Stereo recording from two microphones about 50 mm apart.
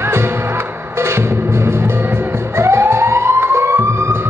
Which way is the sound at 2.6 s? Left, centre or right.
Right.